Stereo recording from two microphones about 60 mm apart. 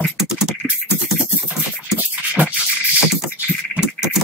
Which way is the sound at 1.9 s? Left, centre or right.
Right.